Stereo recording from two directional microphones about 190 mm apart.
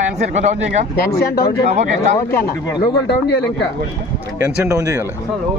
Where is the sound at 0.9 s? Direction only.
55° left (ahead or behind).